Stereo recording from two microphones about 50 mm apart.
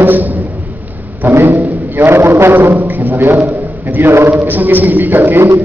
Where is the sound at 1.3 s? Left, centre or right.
Right.